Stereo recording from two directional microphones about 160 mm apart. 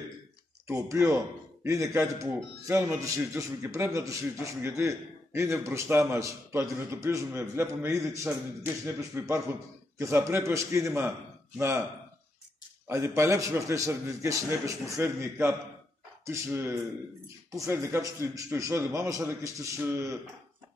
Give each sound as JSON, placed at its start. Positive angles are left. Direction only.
{"t": 0.7, "sound": "a man's voice", "side_deg": -20}
{"t": 12.8, "sound": "a man's voice", "side_deg": -15}